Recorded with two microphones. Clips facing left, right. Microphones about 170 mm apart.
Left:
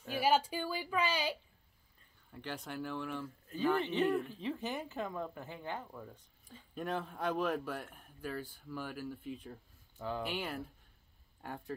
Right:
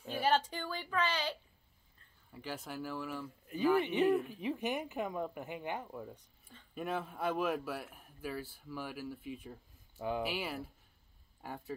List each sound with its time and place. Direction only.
0.1 s speech: 10° left (ahead or behind)
2.3 s speech: 5° right (ahead or behind)
4.3 s speech: 15° right (ahead or behind)